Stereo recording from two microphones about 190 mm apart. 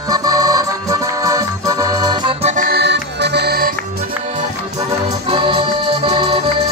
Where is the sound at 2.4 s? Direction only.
35° right (ahead or behind).